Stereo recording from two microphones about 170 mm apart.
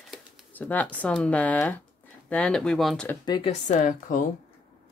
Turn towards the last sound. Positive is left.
turn(degrees=50)  # may be behind; listen again after turning